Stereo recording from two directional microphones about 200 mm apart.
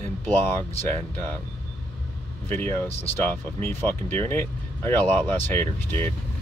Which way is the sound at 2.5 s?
10° left (ahead or behind).